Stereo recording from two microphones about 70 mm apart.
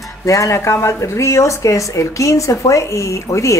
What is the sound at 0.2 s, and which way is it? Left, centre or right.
A woman's voice, left.